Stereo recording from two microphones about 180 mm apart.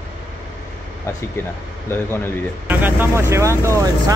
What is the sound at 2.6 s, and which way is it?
Speech, 10° right (ahead or behind).